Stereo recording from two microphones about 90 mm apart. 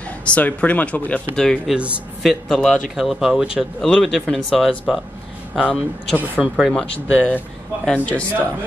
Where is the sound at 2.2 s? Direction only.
5° left (ahead or behind).